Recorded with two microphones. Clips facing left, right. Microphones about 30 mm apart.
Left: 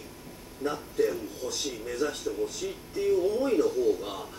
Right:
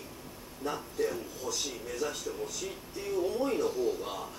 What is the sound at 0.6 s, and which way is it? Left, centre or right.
Speech, left.